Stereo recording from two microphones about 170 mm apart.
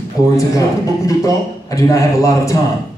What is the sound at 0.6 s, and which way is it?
A man's voice, 20° left (ahead or behind).